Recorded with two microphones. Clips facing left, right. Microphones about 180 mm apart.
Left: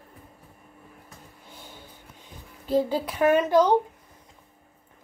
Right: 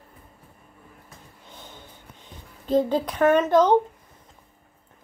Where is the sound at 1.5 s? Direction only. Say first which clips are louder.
Right 2 dB; 10° left (ahead or behind).